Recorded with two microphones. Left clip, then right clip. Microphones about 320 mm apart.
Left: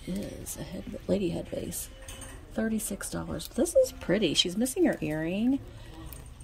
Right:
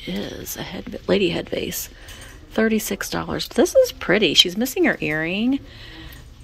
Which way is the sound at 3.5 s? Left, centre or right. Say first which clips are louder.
Right 9 dB; centre.